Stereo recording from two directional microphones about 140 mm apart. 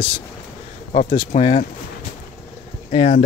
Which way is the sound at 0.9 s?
65° left (ahead or behind).